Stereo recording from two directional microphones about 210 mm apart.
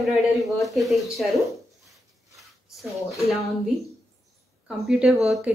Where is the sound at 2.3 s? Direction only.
Centre (ahead or behind).